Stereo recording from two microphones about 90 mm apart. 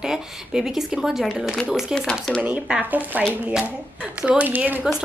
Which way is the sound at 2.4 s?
15° right (ahead or behind).